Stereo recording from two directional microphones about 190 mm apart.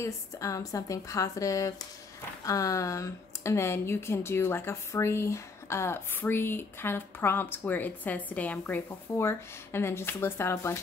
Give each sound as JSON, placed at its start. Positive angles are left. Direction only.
{"t": 0.0, "sound": "speech", "side_deg": 15}